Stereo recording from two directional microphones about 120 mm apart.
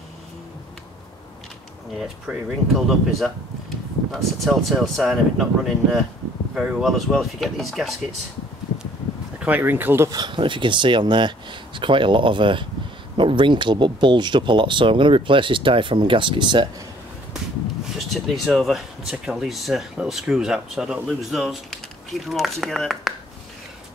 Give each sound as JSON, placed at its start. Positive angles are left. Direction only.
{"t": 2.0, "sound": "speech", "side_deg": -5}
{"t": 9.4, "sound": "speech", "side_deg": -15}
{"t": 10.0, "sound": "speech", "side_deg": -35}
{"t": 17.9, "sound": "speech", "side_deg": 0}